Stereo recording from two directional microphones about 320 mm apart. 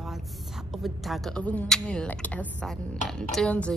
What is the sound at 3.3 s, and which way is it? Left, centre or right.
Speech, centre.